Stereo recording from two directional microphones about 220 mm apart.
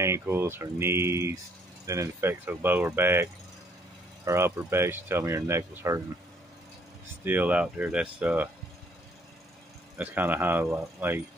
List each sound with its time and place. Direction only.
0.0 s speech: 10° right (ahead or behind)
7.2 s speech: 5° right (ahead or behind)
9.9 s speech: 10° right (ahead or behind)